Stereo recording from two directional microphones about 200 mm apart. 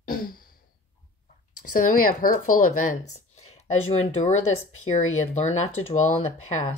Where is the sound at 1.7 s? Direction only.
45° left (ahead or behind).